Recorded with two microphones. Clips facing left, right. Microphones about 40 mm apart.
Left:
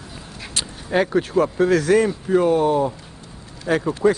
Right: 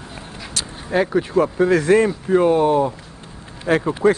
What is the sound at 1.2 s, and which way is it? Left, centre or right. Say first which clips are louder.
Speech: right 1 dB; centre.